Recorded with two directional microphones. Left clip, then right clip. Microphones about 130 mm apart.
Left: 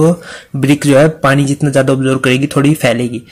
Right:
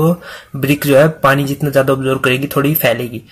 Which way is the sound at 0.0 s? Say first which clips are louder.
Left 4 dB; 25° left (ahead or behind).